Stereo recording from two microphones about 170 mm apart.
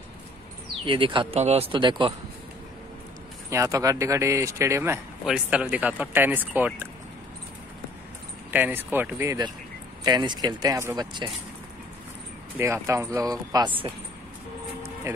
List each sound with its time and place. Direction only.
0.8 s speech: 30° right (ahead or behind)
3.4 s speech: 20° right (ahead or behind)
5.2 s speech: 5° right (ahead or behind)
8.5 s speech: 10° right (ahead or behind)
10.0 s speech: 25° right (ahead or behind)
12.5 s speech: 15° right (ahead or behind)
15.1 s speech: 20° right (ahead or behind)